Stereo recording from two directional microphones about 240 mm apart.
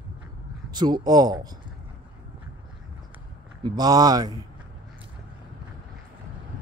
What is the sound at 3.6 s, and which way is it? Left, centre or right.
Speech, centre.